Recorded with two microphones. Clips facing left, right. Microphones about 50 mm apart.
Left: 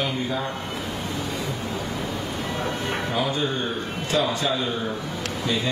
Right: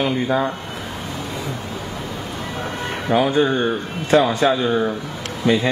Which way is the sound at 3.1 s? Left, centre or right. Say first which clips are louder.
Right 11 dB; right.